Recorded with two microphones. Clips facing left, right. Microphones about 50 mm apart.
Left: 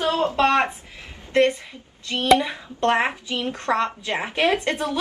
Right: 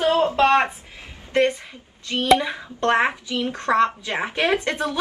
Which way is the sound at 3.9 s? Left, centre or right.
Right.